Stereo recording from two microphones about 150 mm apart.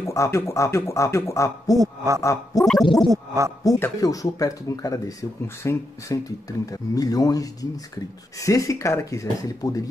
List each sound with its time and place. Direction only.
0.0 s speech: 20° left (ahead or behind)
1.8 s a man's voice: 20° right (ahead or behind)
2.6 s gargling: centre (ahead or behind)
3.1 s a man's voice: 20° right (ahead or behind)
3.6 s speech: 25° left (ahead or behind)